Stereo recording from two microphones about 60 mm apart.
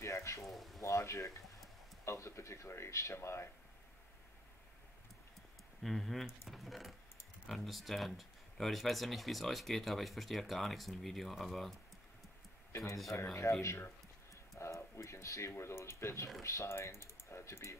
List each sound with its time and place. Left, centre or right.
0.0 s a sound: left
0.4 s speech: centre
0.8 s speech: left
5.8 s speech: centre
12.8 s speech: centre
13.2 s speech: left
15.5 s speech: left